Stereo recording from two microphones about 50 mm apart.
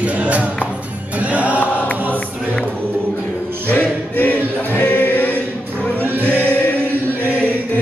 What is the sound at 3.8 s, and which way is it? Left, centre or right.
Music, left.